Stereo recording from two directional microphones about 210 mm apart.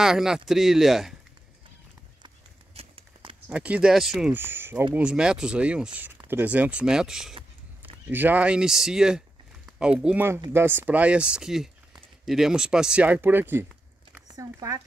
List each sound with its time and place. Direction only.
0.0 s speech: 5° right (ahead or behind)
2.2 s horse: 25° right (ahead or behind)
3.4 s speech: 5° right (ahead or behind)